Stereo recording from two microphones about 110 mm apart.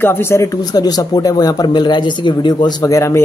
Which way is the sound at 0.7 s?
35° left (ahead or behind).